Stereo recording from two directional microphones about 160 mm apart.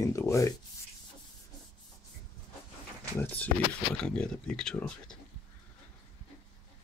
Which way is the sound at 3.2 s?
10° left (ahead or behind).